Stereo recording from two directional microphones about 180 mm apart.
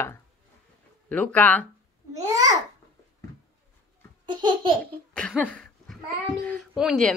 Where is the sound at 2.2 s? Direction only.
20° right (ahead or behind).